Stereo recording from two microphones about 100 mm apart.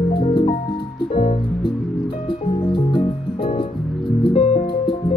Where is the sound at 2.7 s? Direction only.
55° left (ahead or behind).